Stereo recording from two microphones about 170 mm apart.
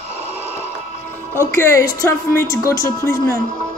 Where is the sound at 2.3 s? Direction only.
15° left (ahead or behind).